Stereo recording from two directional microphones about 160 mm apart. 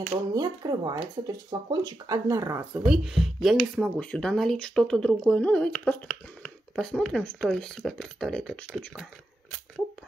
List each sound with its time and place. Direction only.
0.1 s speech: 25° right (ahead or behind)
2.8 s speech: 5° right (ahead or behind)